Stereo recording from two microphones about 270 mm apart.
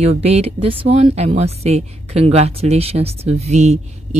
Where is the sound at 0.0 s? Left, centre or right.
Right.